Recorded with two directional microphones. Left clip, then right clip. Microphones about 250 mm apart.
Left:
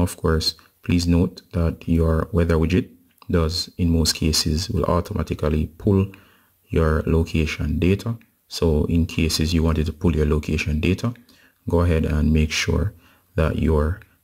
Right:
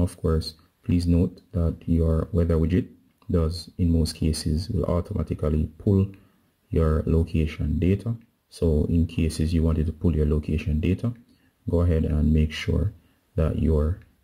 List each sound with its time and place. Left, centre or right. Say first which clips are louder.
0.0 s speech: left 6 dB; centre
6.7 s speech: left 4 dB; centre